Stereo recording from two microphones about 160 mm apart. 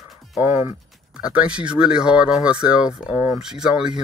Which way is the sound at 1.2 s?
5° right (ahead or behind).